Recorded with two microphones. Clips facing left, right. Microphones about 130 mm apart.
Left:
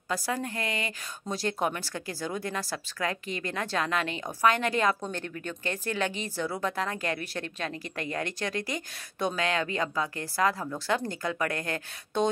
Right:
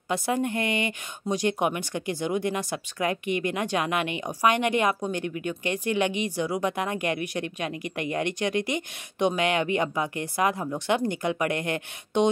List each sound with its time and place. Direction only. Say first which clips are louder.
0.1 s a woman's voice: right 5 dB; 25° right (ahead or behind)